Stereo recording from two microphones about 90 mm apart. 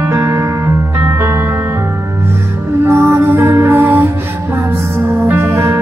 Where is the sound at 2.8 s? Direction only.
30° right (ahead or behind).